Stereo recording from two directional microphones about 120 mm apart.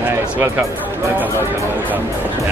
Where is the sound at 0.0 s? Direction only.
20° right (ahead or behind).